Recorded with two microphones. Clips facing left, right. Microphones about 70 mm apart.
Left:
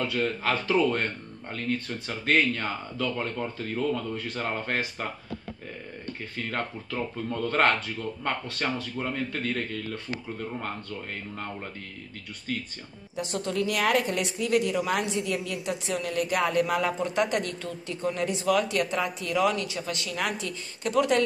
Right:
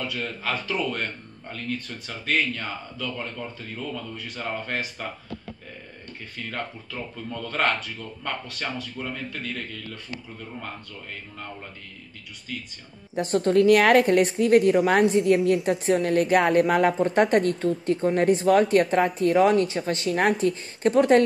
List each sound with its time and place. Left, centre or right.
0.0 s speech: left
6.3 s speech: left
12.5 s speech: left
13.1 s a woman's voice: right